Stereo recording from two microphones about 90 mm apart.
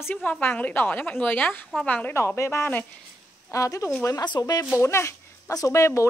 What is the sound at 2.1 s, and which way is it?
Speech, 35° left (ahead or behind).